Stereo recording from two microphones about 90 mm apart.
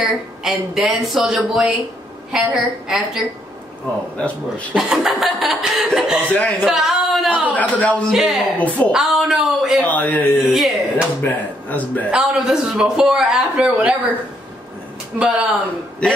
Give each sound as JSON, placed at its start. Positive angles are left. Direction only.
{"t": 0.0, "sound": "speech", "side_deg": -5}
{"t": 4.7, "sound": "speech", "side_deg": -5}
{"t": 6.2, "sound": "a man's voice", "side_deg": 20}
{"t": 6.6, "sound": "speech", "side_deg": -5}
{"t": 7.5, "sound": "a man's voice", "side_deg": 15}
{"t": 8.1, "sound": "speech", "side_deg": -5}
{"t": 8.5, "sound": "a man's voice", "side_deg": 15}
{"t": 8.9, "sound": "speech", "side_deg": -5}
{"t": 9.8, "sound": "a man's voice", "side_deg": 20}
{"t": 10.4, "sound": "speech", "side_deg": 0}
{"t": 11.2, "sound": "a man's voice", "side_deg": 20}
{"t": 12.1, "sound": "speech", "side_deg": -10}
{"t": 15.1, "sound": "speech", "side_deg": -10}